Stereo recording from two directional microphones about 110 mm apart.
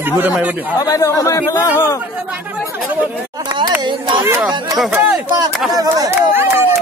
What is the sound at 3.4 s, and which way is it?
Speech, 45° right (ahead or behind).